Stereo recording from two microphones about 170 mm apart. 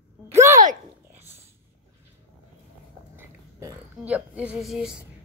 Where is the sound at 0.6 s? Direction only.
50° right (ahead or behind).